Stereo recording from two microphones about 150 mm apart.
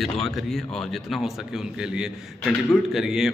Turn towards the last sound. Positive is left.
turn(degrees=0)  # may be behind; listen again after turning